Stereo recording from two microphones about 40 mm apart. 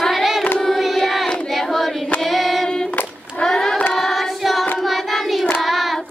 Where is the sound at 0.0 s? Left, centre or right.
Centre.